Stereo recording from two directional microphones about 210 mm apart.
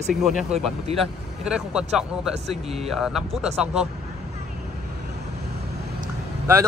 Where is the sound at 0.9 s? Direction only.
30° right (ahead or behind).